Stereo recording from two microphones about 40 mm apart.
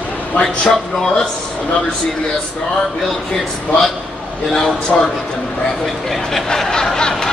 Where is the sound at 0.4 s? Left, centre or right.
Centre.